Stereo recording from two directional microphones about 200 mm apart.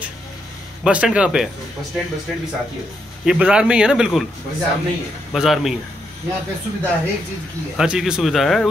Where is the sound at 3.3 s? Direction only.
5° right (ahead or behind).